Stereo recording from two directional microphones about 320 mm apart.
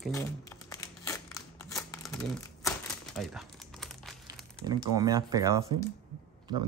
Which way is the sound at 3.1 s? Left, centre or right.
Centre.